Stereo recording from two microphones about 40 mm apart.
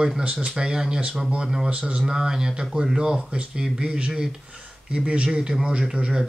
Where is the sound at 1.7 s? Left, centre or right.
Right.